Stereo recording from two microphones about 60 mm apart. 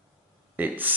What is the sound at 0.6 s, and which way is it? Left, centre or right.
Speech, right.